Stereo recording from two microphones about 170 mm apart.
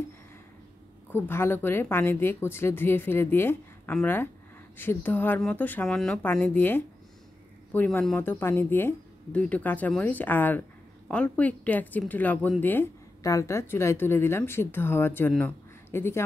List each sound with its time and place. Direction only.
1.1 s speech: 15° left (ahead or behind)